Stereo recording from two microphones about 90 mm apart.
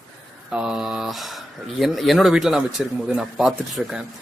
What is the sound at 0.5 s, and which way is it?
Speech, 10° right (ahead or behind).